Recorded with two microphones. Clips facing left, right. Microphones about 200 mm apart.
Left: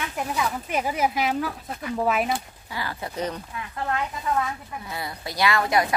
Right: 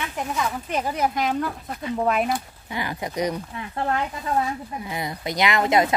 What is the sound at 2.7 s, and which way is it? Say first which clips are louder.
Speech: right 3 dB; 20° right (ahead or behind).